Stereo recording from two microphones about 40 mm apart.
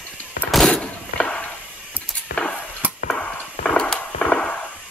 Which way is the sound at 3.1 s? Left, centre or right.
Left.